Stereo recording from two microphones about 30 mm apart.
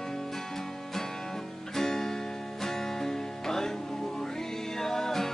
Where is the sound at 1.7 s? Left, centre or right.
Centre.